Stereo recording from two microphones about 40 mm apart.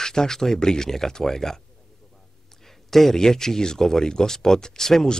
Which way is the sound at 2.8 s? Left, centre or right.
Centre.